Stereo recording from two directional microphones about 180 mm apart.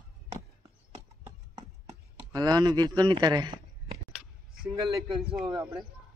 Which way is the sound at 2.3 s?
20° right (ahead or behind).